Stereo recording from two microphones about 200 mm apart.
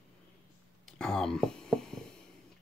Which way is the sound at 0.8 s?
5° left (ahead or behind).